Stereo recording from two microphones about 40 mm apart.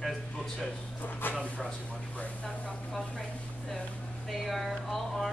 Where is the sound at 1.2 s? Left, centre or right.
Left.